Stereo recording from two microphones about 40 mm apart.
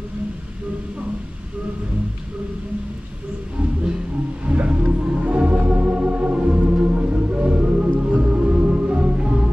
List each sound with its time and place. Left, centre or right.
4.5 s music: right